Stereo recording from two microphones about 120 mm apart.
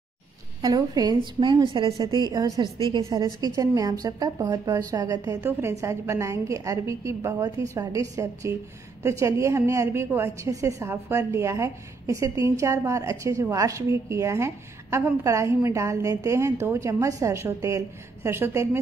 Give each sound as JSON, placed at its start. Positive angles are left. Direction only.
{"t": 0.6, "sound": "a woman's voice", "side_deg": -30}
{"t": 5.4, "sound": "a woman's voice", "side_deg": -20}